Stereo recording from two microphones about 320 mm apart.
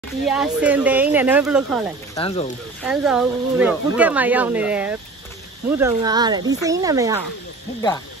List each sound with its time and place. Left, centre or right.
0.3 s speech: centre
2.1 s speech: centre
2.8 s speech: centre